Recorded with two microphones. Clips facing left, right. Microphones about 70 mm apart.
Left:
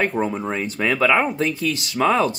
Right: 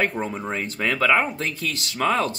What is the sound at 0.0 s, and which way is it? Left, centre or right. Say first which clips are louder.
Speech: left 3 dB; centre.